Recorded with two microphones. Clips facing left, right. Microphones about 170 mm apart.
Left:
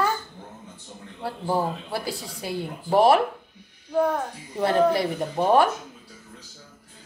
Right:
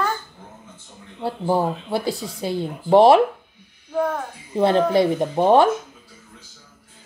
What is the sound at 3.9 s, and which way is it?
Speech, centre (ahead or behind).